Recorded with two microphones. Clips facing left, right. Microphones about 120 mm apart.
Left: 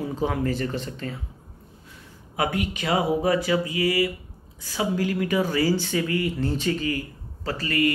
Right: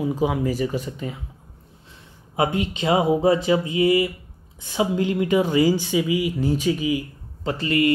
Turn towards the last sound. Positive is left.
turn(degrees=-25)  # may be behind; listen again after turning